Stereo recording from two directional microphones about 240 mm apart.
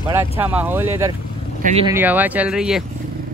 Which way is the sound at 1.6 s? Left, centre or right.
Right.